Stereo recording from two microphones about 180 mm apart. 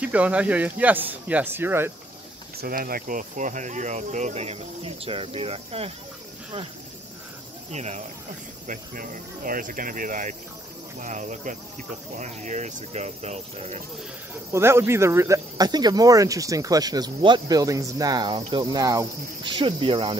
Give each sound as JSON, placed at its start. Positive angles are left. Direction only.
{"t": 0.0, "sound": "speech", "side_deg": -10}
{"t": 2.5, "sound": "speech", "side_deg": -55}
{"t": 7.7, "sound": "speech", "side_deg": -40}
{"t": 14.5, "sound": "speech", "side_deg": -15}